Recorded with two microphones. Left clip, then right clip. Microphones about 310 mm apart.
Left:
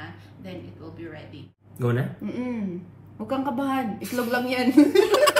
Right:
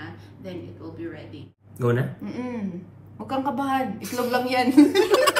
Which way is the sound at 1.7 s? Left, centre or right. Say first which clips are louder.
Right 3 dB; centre.